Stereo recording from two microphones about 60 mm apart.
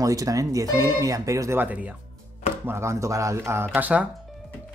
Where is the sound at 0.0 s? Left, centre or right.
Right.